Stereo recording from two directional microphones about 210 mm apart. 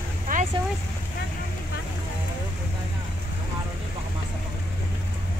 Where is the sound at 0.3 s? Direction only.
40° right (ahead or behind).